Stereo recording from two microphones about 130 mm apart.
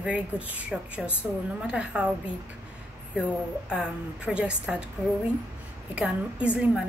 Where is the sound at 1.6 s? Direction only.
5° right (ahead or behind).